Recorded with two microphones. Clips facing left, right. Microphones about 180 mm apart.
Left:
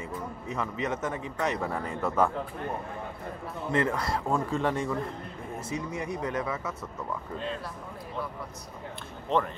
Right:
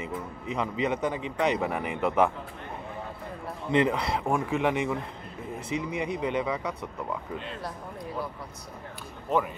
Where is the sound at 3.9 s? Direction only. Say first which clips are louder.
Right 2 dB; 15° right (ahead or behind).